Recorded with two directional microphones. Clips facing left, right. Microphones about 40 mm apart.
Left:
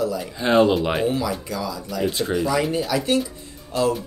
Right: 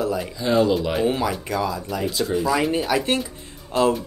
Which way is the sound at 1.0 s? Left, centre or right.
Right.